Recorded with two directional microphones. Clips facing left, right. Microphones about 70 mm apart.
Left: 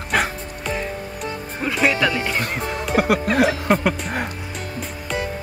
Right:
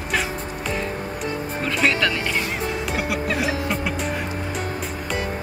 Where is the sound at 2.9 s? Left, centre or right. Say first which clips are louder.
Left 9 dB; left.